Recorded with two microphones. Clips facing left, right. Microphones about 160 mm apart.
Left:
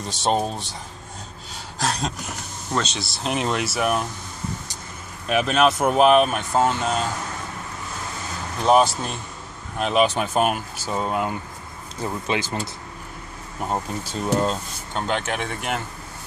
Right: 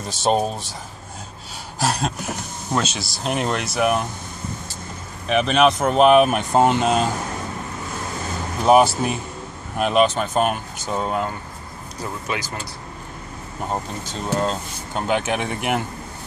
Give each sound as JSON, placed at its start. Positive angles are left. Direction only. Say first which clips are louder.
{"t": 0.0, "sound": "speech", "louder": "right 2 dB", "side_deg": -5}
{"t": 1.8, "sound": "speech", "louder": "right 3 dB", "side_deg": -5}
{"t": 5.3, "sound": "speech", "louder": "right 2 dB", "side_deg": 5}
{"t": 6.3, "sound": "speech", "louder": "right 4 dB", "side_deg": -15}
{"t": 8.6, "sound": "speech", "louder": "right 3 dB", "side_deg": -10}
{"t": 9.9, "sound": "speech", "louder": "right 1 dB", "side_deg": 10}
{"t": 12.3, "sound": "speech", "louder": "left 4 dB", "side_deg": 25}
{"t": 13.7, "sound": "speech", "louder": "left 1 dB", "side_deg": 5}
{"t": 15.0, "sound": "speech", "louder": "right 3 dB", "side_deg": -10}